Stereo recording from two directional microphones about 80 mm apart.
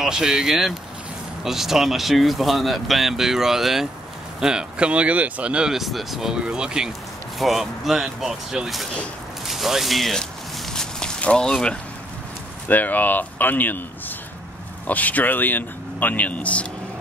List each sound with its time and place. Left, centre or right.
0.0 s speech: centre
9.5 s walk: centre
12.6 s speech: left